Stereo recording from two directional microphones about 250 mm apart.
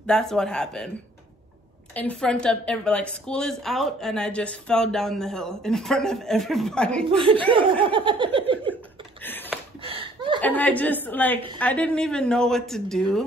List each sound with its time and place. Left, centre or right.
0.0 s a woman's voice: centre
2.0 s a woman's voice: centre
7.5 s laughter: centre
9.2 s a sound: centre
9.8 s chuckle: right
10.4 s a woman's voice: centre